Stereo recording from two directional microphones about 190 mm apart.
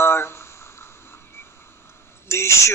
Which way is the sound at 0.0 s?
15° left (ahead or behind).